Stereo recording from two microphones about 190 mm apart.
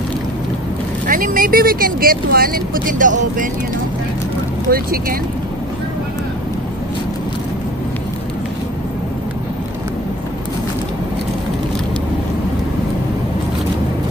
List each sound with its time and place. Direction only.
1.0 s speech: 45° right (ahead or behind)
4.6 s speech: 50° right (ahead or behind)